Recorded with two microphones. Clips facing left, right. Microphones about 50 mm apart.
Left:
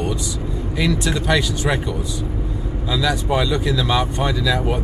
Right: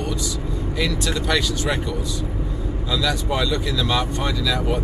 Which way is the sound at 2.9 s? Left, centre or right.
Centre.